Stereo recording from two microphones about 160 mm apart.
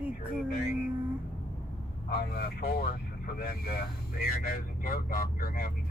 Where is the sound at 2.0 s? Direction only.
75° left (ahead or behind).